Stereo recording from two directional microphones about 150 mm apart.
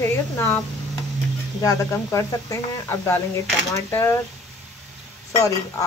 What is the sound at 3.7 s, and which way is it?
Speech, 15° left (ahead or behind).